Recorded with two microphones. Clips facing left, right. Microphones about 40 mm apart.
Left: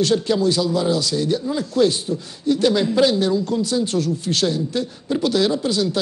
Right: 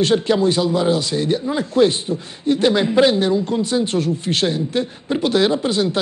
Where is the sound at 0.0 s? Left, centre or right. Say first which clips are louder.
Right 2 dB; right.